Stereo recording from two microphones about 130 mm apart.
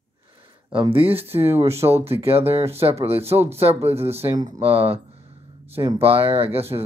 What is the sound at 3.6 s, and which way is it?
Speech, 50° right (ahead or behind).